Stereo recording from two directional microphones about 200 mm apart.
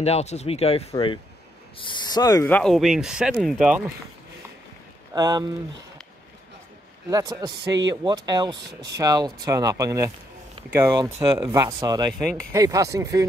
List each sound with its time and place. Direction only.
0.0 s speech: 30° left (ahead or behind); by 3.8 s 5° right (ahead or behind)
5.1 s speech: 20° right (ahead or behind)
7.1 s speech: 15° right (ahead or behind)
12.1 s speech: 5° left (ahead or behind)
12.5 s speech: 15° right (ahead or behind)